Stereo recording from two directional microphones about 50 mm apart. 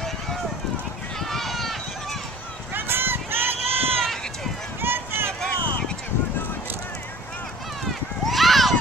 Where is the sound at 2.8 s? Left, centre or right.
Right.